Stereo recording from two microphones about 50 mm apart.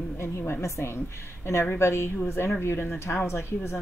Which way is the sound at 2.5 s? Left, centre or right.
Left.